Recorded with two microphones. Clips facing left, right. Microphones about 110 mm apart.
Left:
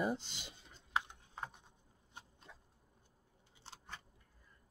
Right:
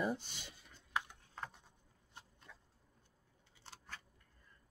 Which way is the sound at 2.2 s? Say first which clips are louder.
Left 2 dB; 20° left (ahead or behind).